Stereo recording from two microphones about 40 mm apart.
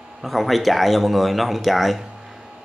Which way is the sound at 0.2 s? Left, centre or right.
Centre.